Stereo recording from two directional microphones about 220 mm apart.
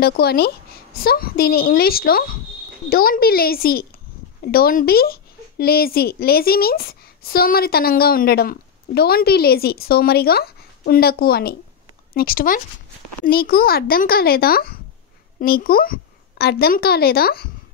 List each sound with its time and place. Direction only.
0.0 s a woman's voice: 45° left (ahead or behind)